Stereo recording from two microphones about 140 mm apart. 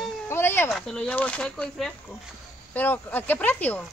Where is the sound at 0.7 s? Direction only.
5° left (ahead or behind).